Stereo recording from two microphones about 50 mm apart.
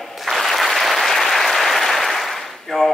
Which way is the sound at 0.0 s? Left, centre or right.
Centre.